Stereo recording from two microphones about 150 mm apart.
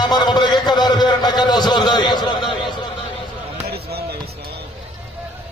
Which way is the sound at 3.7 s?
90° right.